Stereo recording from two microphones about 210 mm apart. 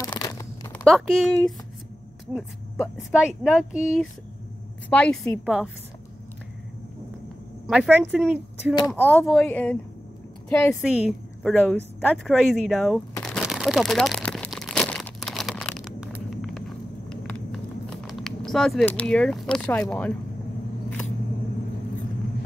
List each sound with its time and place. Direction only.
0.0 s a sound: 15° left (ahead or behind)
0.8 s speech: centre (ahead or behind)
4.8 s speech: 5° left (ahead or behind)
7.6 s speech: 5° right (ahead or behind)
8.7 s speech: 15° left (ahead or behind)
9.2 s speech: centre (ahead or behind)
10.8 s a woman's voice: 5° right (ahead or behind)
13.2 s crumpling: centre (ahead or behind)
16.3 s a sound: centre (ahead or behind)